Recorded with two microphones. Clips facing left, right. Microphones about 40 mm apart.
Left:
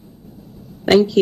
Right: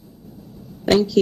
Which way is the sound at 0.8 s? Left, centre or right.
Left.